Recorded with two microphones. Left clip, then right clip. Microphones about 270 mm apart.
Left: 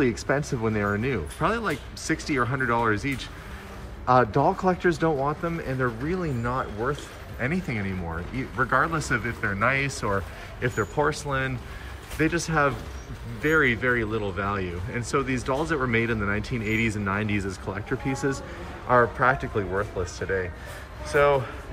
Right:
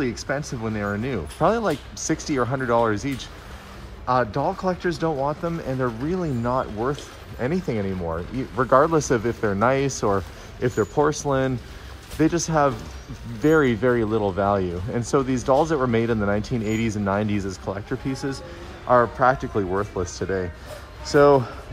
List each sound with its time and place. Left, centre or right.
0.0 s speech: centre